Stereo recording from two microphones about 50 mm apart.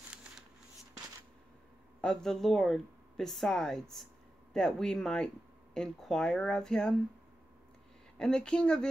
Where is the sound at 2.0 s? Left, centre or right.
Centre.